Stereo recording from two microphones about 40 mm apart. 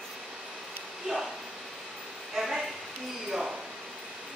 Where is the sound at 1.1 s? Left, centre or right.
Centre.